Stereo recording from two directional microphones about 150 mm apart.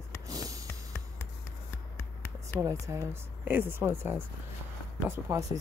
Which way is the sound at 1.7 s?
15° left (ahead or behind).